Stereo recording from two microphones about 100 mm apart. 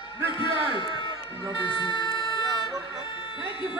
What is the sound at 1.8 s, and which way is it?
Emergency vehicle, 50° left (ahead or behind).